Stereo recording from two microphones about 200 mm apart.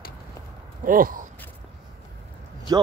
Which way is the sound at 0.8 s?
45° right (ahead or behind).